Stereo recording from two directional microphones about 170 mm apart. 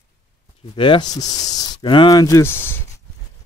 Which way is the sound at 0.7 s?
30° left (ahead or behind).